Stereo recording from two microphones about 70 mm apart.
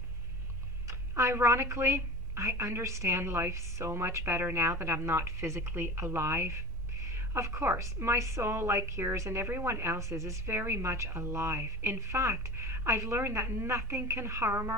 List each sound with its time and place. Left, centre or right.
0.8 s a woman's voice: right